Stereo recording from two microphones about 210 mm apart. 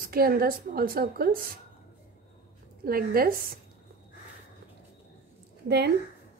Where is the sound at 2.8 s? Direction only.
45° right (ahead or behind).